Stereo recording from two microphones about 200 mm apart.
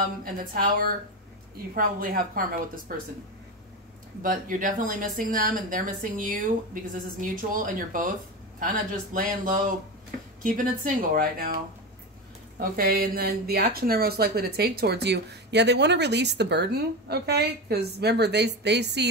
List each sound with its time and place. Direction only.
0.2 s speech: 45° right (ahead or behind)
4.2 s speech: 40° right (ahead or behind)
12.5 s speech: 45° right (ahead or behind)